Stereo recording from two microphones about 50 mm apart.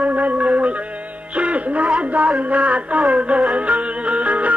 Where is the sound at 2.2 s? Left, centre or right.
Right.